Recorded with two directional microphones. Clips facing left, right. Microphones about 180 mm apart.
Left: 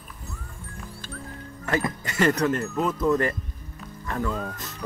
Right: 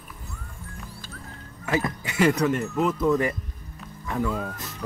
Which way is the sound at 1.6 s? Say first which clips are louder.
Even; centre (ahead or behind).